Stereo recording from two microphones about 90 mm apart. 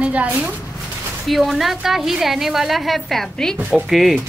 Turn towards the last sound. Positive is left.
turn(degrees=0)  # may be behind; listen again after turning